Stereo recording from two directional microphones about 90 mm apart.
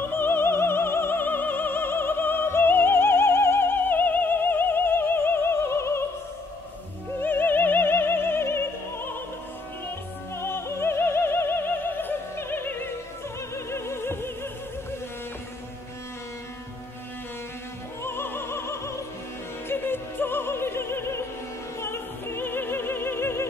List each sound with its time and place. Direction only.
0.1 s opera: 25° left (ahead or behind)
7.2 s opera: 25° left (ahead or behind)
10.3 s opera: 30° left (ahead or behind)
13.7 s music: 30° left (ahead or behind)
18.0 s opera: 25° left (ahead or behind)